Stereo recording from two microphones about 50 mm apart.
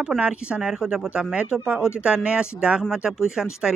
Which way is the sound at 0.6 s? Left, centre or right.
Centre.